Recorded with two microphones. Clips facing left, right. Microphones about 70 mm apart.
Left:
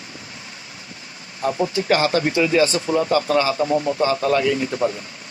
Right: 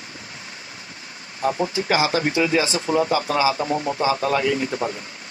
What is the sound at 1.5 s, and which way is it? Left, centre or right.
Speech, centre.